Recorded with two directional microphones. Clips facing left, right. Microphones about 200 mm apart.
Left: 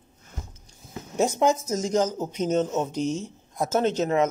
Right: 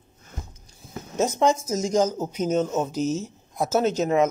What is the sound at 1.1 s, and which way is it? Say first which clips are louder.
Speech: even; 15° left (ahead or behind).